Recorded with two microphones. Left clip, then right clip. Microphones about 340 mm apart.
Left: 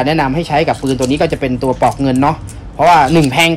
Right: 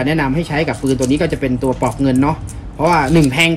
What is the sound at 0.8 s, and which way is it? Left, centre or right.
Speech, centre.